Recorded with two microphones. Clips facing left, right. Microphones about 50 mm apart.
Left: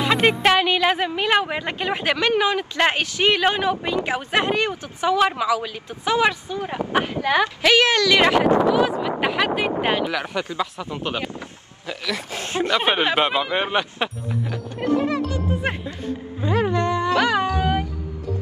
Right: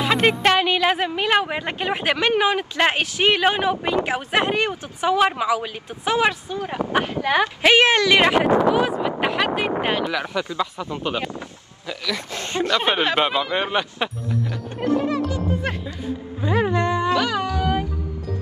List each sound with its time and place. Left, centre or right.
0.0 s a woman's voice: centre
7.4 s a woman's voice: right
8.2 s speech: centre
9.2 s speech: centre
14.7 s music: right
15.7 s speech: left
16.7 s a woman's voice: right
17.1 s a sound: left